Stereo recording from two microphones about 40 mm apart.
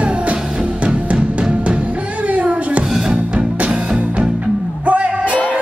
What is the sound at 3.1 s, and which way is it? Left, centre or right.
Music, right.